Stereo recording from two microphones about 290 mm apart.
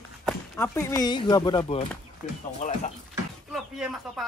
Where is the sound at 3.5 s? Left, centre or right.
Centre.